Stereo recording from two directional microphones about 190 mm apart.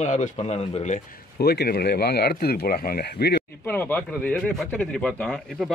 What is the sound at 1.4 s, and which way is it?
Speech, 55° left (ahead or behind).